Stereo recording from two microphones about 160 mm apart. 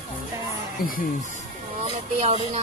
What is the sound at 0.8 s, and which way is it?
Speech, 70° left (ahead or behind).